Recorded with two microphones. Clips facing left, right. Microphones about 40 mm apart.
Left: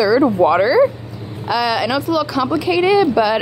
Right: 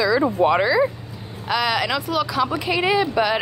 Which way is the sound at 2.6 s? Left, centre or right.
Right.